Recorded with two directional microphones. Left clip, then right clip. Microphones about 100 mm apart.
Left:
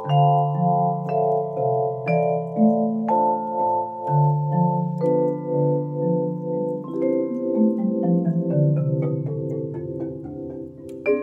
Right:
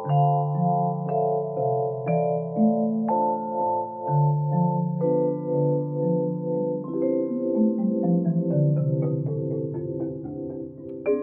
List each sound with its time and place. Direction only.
0.1 s music: 25° left (ahead or behind)